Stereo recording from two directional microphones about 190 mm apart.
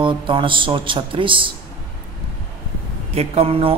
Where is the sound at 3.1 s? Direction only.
30° right (ahead or behind).